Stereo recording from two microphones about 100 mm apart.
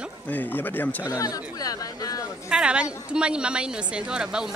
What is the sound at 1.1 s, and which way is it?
Speech, 35° left (ahead or behind).